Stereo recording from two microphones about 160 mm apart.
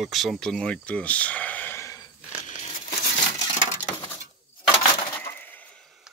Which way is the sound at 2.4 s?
50° left (ahead or behind).